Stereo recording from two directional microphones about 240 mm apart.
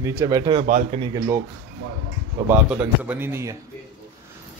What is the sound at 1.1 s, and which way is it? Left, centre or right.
Speech, centre.